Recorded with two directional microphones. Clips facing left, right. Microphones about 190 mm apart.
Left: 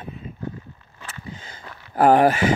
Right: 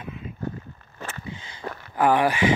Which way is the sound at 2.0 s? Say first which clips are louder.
Left 4 dB; 45° left (ahead or behind).